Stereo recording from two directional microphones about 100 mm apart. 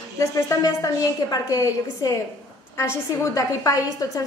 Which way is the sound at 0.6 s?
35° left (ahead or behind).